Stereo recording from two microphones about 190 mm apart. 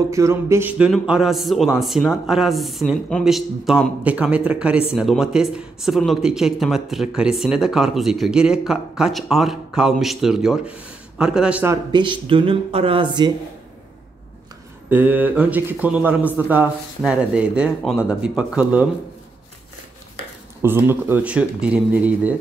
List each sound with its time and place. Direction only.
0.1 s speech: 15° right (ahead or behind)
11.9 s speech: 25° right (ahead or behind)
14.9 s speech: 10° right (ahead or behind)
20.6 s speech: 10° right (ahead or behind)